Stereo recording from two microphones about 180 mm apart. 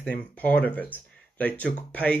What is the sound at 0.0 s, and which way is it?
Speech, 5° left (ahead or behind).